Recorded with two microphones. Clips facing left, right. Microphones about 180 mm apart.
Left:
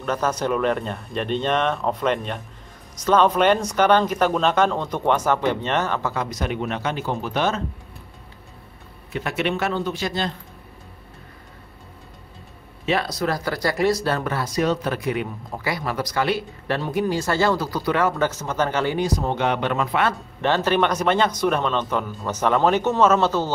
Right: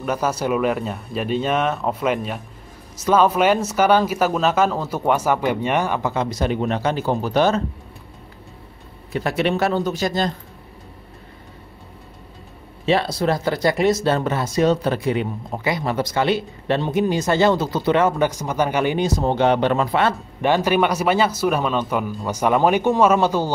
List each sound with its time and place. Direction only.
0.0 s speech: 10° right (ahead or behind)
6.2 s speech: 30° right (ahead or behind)
9.1 s speech: 35° right (ahead or behind)
12.8 s speech: 30° right (ahead or behind)
20.4 s speech: 10° right (ahead or behind)